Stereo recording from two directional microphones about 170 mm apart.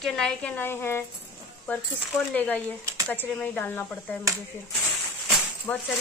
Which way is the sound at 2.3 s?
10° left (ahead or behind).